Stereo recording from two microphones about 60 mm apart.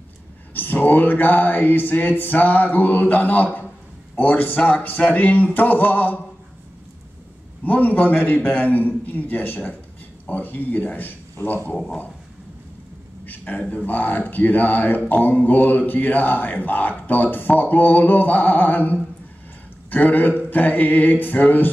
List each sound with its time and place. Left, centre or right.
0.6 s a man's voice: left
7.6 s a man's voice: left
11.7 s a man's voice: centre
13.2 s a sound: left
13.8 s a man's voice: left